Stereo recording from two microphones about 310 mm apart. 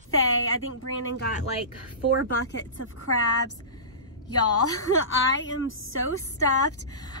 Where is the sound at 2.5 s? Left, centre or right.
Left.